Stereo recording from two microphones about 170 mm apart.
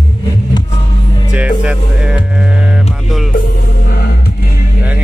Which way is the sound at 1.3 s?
5° right (ahead or behind).